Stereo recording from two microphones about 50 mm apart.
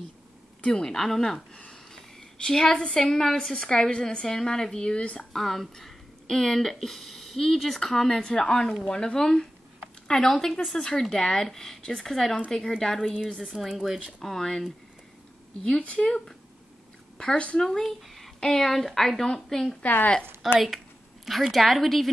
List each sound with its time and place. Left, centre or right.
0.6 s speech: centre
5.3 s speech: centre
13.0 s a woman's voice: centre
14.2 s speech: centre
15.8 s speech: left
17.6 s speech: centre
19.8 s a woman's voice: left
20.5 s a woman's voice: centre